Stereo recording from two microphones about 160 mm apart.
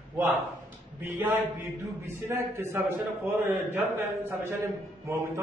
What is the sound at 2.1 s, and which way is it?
A man's voice, 15° right (ahead or behind).